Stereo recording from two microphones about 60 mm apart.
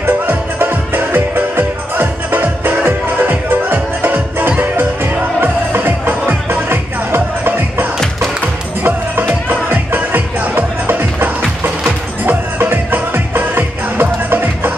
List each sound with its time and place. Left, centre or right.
0.0 s music: right